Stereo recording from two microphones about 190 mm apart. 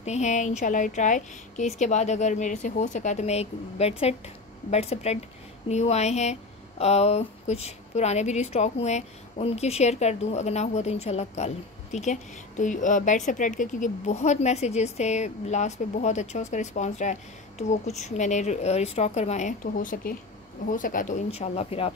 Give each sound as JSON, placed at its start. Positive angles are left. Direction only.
{"t": 0.0, "sound": "a woman's voice", "side_deg": 35}